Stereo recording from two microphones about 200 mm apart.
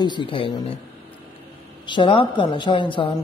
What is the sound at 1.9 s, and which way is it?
A man's voice, 25° left (ahead or behind).